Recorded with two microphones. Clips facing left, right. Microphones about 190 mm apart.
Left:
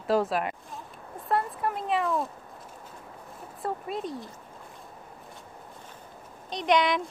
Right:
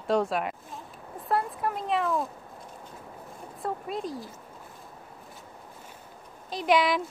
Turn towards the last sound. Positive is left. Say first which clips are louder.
# even
turn(degrees=-5)  # may be behind; listen again after turning